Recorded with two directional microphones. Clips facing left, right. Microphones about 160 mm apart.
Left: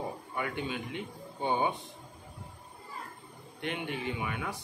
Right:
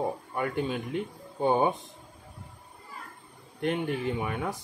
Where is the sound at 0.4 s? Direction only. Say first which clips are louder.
Right 5 dB; 40° right (ahead or behind).